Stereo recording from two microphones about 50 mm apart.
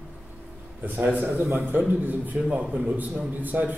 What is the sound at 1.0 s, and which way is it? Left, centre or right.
Speech, right.